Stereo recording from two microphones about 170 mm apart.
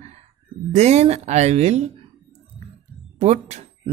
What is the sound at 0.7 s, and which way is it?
Speech, 40° right (ahead or behind).